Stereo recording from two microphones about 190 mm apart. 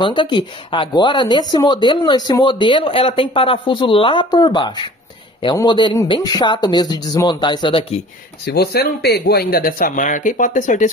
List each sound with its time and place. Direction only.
0.0 s speech: 25° left (ahead or behind)
8.5 s speech: 55° left (ahead or behind)